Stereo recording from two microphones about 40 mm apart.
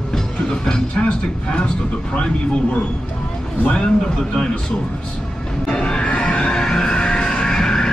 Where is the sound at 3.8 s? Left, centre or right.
Centre.